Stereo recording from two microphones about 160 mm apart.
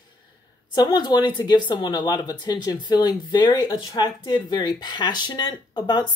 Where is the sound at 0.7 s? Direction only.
25° left (ahead or behind).